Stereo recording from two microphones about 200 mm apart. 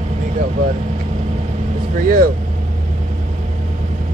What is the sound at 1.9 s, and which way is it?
Speech, 45° right (ahead or behind).